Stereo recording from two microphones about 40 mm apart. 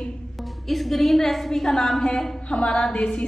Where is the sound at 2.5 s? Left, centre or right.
Left.